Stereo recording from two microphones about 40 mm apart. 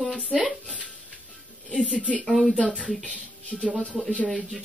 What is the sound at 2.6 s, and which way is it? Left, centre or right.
Speech, left.